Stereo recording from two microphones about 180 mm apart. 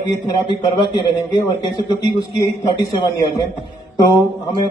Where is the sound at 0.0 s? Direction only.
25° left (ahead or behind).